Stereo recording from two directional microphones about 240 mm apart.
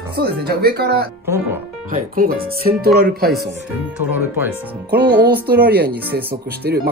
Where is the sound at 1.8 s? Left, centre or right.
Right.